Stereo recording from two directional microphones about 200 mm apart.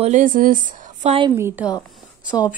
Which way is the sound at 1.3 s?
15° right (ahead or behind).